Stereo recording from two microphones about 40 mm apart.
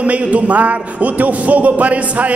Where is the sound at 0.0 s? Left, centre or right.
Right.